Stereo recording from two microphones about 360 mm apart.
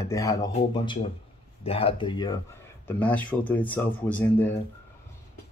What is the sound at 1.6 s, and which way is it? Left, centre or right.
Speech, centre.